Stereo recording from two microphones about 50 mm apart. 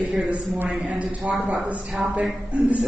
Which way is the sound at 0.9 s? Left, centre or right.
Right.